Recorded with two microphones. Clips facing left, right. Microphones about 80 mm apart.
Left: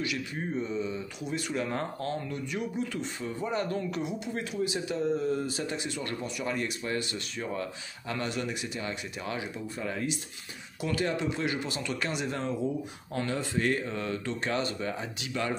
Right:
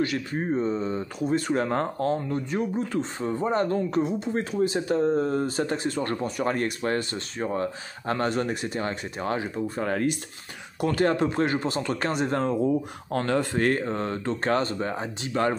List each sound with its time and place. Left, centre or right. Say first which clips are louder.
0.0 s speech: right 7 dB; right